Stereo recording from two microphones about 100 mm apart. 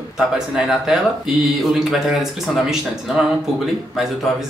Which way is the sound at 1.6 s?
Centre (ahead or behind).